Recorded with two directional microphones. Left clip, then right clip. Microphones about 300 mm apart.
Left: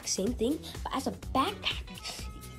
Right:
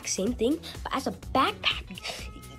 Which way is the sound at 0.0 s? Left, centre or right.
Centre.